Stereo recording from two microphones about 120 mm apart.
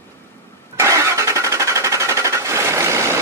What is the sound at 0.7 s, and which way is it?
Vehicle, 25° right (ahead or behind).